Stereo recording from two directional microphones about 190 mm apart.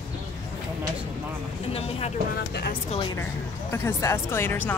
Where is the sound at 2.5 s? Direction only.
55° left (ahead or behind).